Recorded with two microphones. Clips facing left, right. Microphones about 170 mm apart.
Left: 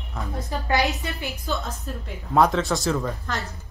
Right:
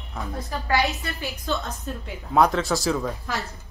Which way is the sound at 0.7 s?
20° left (ahead or behind).